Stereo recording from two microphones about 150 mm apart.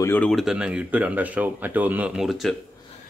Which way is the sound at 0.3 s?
Centre (ahead or behind).